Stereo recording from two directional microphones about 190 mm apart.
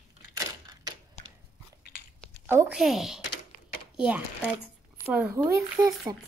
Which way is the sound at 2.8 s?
Centre (ahead or behind).